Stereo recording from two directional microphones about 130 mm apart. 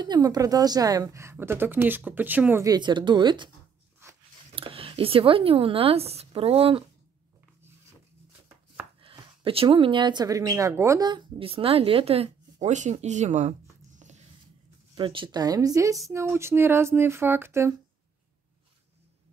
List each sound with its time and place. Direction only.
0.0 s speech: 35° right (ahead or behind); by 2.6 s 15° right (ahead or behind)
2.6 s speech: 35° right (ahead or behind)
4.5 s speech: 45° right (ahead or behind)
9.0 s speech: 40° right (ahead or behind); by 14.2 s 60° right (ahead or behind)
15.0 s speech: 40° right (ahead or behind); by 17.7 s 20° right (ahead or behind)